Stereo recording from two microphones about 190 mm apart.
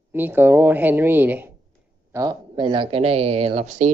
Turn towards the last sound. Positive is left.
turn(degrees=-40)  # may be behind; listen again after turning